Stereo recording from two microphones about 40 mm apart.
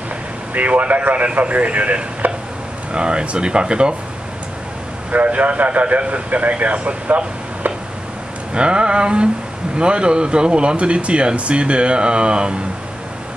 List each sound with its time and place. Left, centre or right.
0.6 s a man's voice: right
2.9 s speech: right
5.1 s a man's voice: right
8.5 s speech: right